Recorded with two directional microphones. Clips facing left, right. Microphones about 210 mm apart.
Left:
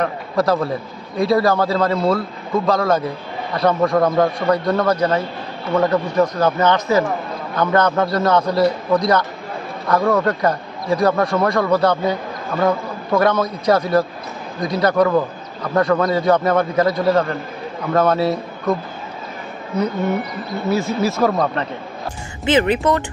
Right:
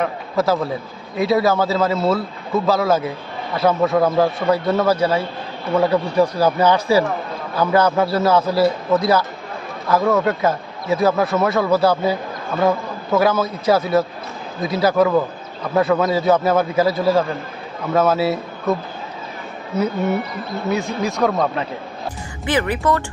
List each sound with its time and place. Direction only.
0.0 s a man's voice: 5° right (ahead or behind)
20.7 s a man's voice: 5° left (ahead or behind)
22.5 s speech: 25° left (ahead or behind)